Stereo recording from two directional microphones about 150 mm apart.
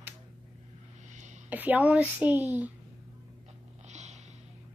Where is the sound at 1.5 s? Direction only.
10° right (ahead or behind).